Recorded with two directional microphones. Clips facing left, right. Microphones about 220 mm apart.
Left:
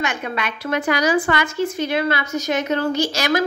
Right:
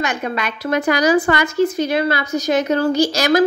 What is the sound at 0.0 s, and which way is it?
A woman's voice, 40° right (ahead or behind).